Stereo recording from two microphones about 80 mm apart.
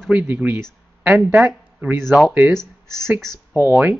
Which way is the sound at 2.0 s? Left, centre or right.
Centre.